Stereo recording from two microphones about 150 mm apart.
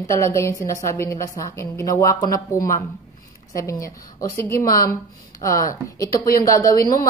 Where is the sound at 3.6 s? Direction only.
20° left (ahead or behind).